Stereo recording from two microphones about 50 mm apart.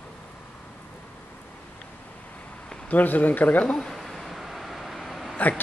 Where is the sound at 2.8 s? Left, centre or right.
Left.